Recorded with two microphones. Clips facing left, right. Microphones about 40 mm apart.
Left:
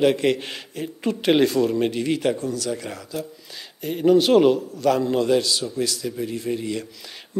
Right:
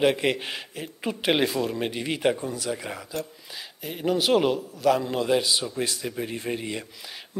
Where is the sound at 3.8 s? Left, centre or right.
Centre; by 6.8 s right.